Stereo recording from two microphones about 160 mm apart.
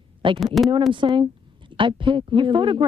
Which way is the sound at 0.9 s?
30° right (ahead or behind).